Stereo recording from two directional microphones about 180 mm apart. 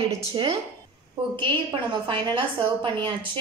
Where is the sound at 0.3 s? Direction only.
30° right (ahead or behind).